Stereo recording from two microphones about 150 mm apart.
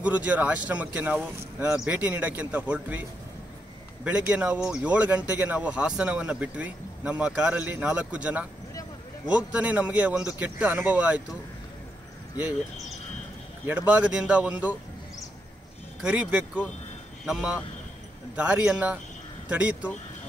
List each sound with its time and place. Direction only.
0.0 s speech: 10° right (ahead or behind)
13.7 s speech: 10° right (ahead or behind)
16.0 s a man's voice: 5° right (ahead or behind)